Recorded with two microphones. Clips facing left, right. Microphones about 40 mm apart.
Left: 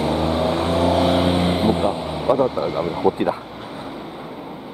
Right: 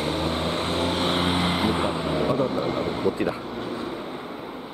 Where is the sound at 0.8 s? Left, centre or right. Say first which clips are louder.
Left 7 dB; right.